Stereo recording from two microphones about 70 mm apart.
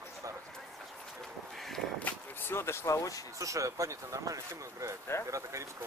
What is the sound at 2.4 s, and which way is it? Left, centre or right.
Speech, left.